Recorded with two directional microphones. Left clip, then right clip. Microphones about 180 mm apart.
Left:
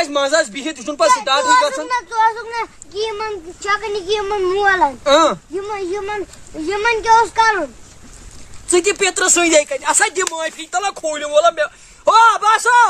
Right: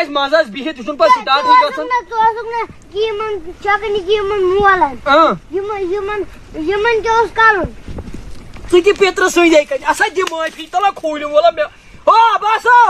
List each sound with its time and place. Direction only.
0.0 s speech: 20° left (ahead or behind)
8.7 s speech: 20° left (ahead or behind)